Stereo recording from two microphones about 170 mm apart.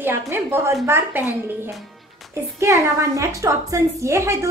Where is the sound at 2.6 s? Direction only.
20° right (ahead or behind).